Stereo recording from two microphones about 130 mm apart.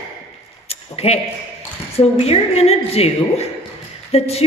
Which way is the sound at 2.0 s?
50° left (ahead or behind).